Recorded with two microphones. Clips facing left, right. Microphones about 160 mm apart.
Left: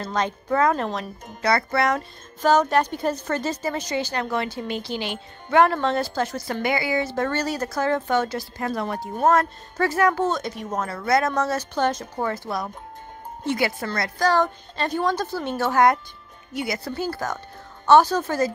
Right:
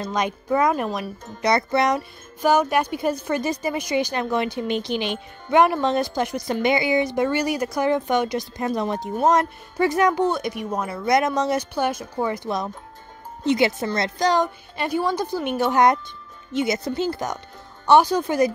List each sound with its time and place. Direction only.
0.0 s speech: 15° right (ahead or behind)